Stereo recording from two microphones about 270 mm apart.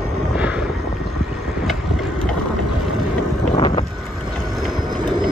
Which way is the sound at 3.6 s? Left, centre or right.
Centre.